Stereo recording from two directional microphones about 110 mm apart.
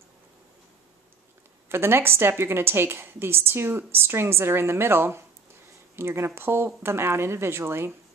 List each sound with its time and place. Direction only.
1.7 s a woman's voice: 20° right (ahead or behind)